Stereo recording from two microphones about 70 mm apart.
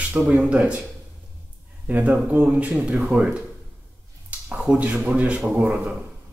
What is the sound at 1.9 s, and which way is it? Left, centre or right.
A man's voice, right.